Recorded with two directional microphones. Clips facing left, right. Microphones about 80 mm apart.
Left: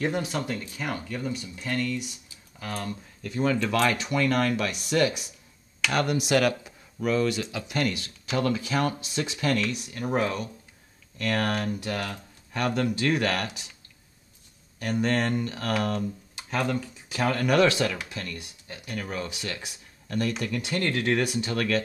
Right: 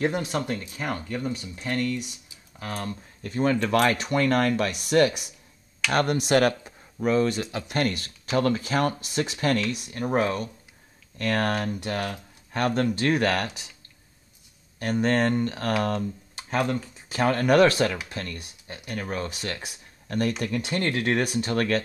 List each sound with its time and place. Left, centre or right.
0.0 s speech: right
14.8 s speech: right